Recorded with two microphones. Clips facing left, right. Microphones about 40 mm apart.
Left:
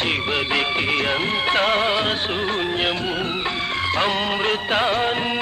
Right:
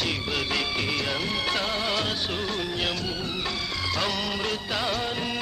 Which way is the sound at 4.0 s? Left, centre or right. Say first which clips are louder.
Left 7 dB; left.